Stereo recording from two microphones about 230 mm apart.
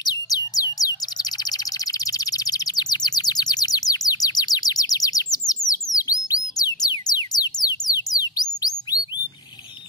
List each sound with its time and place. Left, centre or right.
0.0 s bird: centre
5.7 s music: centre
7.5 s bird: centre